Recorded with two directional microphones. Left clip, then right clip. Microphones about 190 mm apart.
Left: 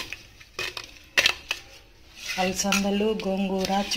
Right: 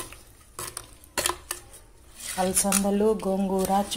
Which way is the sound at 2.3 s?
Centre (ahead or behind).